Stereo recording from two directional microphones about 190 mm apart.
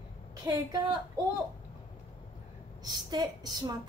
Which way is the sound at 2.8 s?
20° right (ahead or behind).